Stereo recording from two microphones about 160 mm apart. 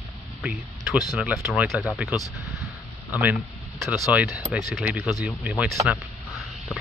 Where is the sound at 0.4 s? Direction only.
5° right (ahead or behind).